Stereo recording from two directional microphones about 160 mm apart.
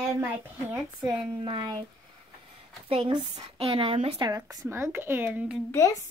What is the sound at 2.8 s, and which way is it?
Speech, 35° right (ahead or behind).